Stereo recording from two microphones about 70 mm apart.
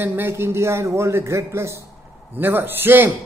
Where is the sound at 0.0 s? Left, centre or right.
Right.